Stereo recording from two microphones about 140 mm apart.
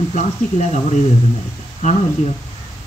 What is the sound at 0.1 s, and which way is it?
Speech, 55° left (ahead or behind).